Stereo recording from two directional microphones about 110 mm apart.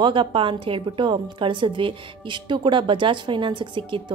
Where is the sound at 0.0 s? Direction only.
50° right (ahead or behind).